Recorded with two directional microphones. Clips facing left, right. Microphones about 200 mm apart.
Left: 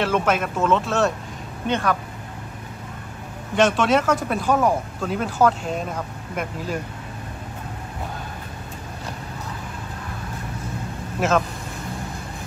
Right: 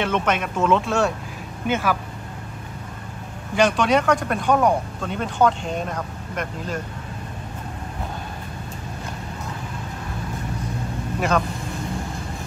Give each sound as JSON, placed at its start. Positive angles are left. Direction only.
{"t": 0.0, "sound": "speech", "side_deg": 5}
{"t": 3.5, "sound": "speech", "side_deg": 0}
{"t": 11.1, "sound": "speech", "side_deg": 0}